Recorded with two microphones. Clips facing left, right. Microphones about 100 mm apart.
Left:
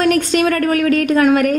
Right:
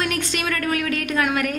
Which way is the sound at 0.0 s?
35° left (ahead or behind).